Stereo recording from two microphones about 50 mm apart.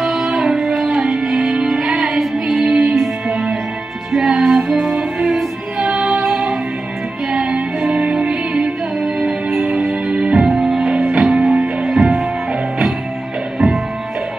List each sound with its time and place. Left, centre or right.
0.0 s music: centre
0.4 s music: centre